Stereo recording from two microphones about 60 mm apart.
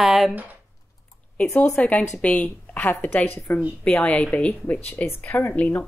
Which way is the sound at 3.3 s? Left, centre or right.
Left.